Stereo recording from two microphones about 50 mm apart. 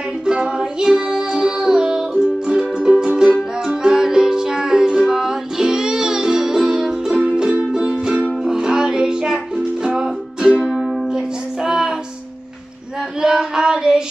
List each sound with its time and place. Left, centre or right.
0.2 s music: centre
13.2 s child singing: centre